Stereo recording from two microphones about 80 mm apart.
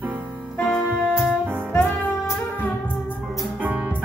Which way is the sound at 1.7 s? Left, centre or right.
Centre.